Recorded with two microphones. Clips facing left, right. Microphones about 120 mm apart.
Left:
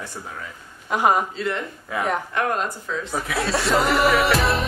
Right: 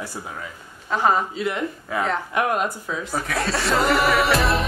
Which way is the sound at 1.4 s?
10° right (ahead or behind).